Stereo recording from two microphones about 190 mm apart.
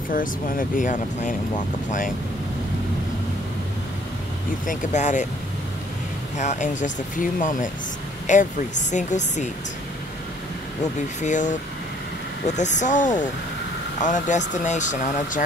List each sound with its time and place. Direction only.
0.1 s speech: 45° left (ahead or behind)
4.6 s speech: 40° left (ahead or behind)
6.3 s speech: 40° left (ahead or behind)
11.1 s speech: 40° left (ahead or behind)
12.5 s speech: 40° left (ahead or behind)